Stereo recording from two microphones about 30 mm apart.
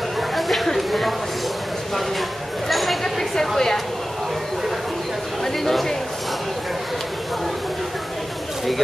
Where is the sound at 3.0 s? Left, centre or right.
Centre.